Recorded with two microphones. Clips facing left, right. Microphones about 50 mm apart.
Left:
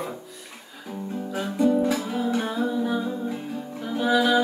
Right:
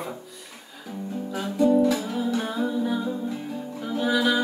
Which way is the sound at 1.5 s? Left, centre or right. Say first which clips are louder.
Right 2 dB; left.